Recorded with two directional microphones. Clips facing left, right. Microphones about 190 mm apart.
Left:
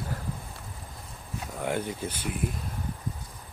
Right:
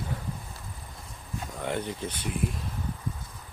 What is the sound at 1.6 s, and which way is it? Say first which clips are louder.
Speech: left 1 dB; 5° left (ahead or behind).